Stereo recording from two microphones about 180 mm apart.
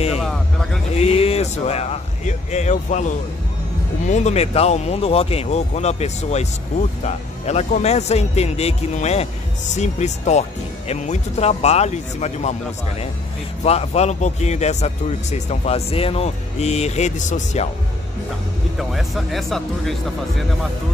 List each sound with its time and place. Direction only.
0.2 s vehicle: 5° left (ahead or behind)
0.9 s speech: 35° left (ahead or behind)
13.7 s speech: 35° left (ahead or behind)
18.8 s speech: centre (ahead or behind)